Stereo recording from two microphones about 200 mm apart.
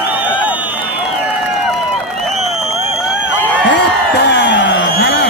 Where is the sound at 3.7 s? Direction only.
55° left (ahead or behind).